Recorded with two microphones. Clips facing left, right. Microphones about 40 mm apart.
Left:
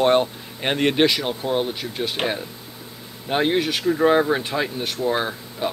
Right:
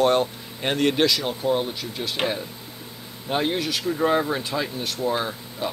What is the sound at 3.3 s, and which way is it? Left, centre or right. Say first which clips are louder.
Speech: left 4 dB; left.